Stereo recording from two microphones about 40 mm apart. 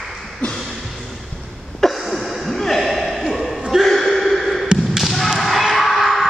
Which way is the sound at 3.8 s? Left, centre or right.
Centre.